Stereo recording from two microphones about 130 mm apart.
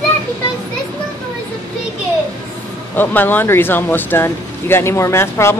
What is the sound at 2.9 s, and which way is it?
Speech, 15° left (ahead or behind).